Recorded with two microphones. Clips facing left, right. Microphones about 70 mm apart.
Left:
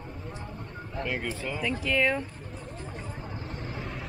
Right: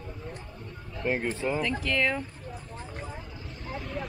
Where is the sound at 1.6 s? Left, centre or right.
Centre.